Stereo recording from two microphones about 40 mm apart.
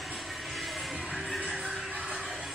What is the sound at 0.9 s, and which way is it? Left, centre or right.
Music, centre.